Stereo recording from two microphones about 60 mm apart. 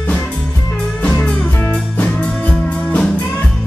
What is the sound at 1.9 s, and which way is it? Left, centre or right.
Music, left.